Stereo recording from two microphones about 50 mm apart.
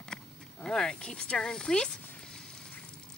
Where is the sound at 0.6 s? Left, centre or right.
Centre.